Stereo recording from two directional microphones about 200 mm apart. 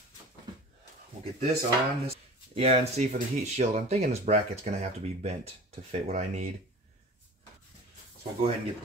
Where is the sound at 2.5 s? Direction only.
30° right (ahead or behind).